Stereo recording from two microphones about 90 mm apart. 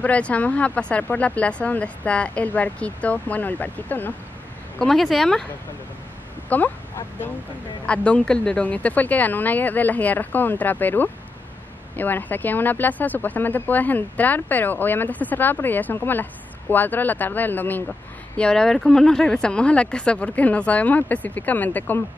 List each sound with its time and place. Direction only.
0.0 s speech: 15° left (ahead or behind)
4.7 s speech: 5° left (ahead or behind)
6.5 s speech: 20° left (ahead or behind)
7.8 s speech: 15° left (ahead or behind)
18.4 s speech: 10° left (ahead or behind)